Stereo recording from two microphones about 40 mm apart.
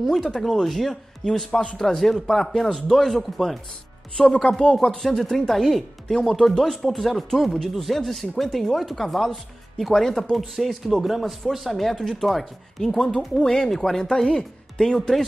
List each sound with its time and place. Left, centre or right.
0.1 s speech: centre
4.2 s speech: centre
4.9 s speech: centre